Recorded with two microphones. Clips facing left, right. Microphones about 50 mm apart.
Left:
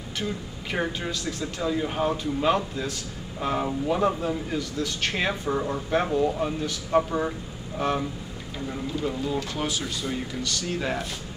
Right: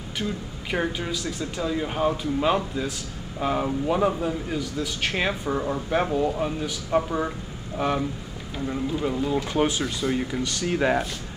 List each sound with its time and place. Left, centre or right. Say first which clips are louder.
0.7 s a man's voice: right 2 dB; centre; by 11.1 s right